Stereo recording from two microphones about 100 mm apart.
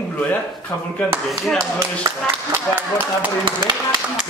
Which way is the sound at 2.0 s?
25° right (ahead or behind).